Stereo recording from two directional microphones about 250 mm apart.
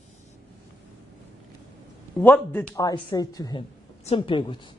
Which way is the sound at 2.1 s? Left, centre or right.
Centre.